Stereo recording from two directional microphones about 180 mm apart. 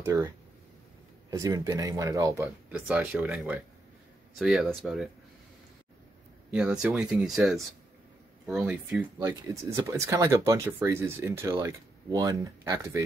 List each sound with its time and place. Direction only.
0.0 s speech: 15° right (ahead or behind)
1.3 s speech: 20° right (ahead or behind); by 5.1 s centre (ahead or behind)
6.5 s speech: 5° right (ahead or behind)
9.2 s speech: 15° right (ahead or behind)